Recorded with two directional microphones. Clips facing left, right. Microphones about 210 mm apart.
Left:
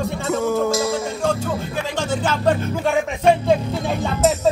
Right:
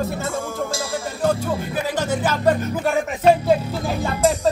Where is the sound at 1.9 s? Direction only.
10° right (ahead or behind).